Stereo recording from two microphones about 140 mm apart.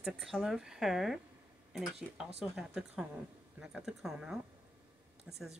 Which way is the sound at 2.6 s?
5° right (ahead or behind).